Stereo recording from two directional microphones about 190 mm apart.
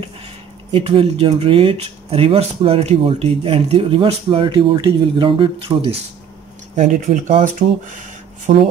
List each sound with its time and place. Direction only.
0.7 s speech: 30° right (ahead or behind)
6.8 s speech: 40° right (ahead or behind)
8.5 s speech: 40° right (ahead or behind)